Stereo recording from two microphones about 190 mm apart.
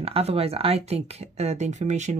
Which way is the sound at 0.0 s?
30° right (ahead or behind).